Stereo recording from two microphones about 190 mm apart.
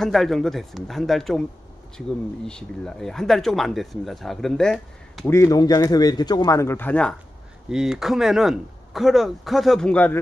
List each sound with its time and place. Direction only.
0.0 s speech: centre (ahead or behind)
5.2 s speech: 15° left (ahead or behind)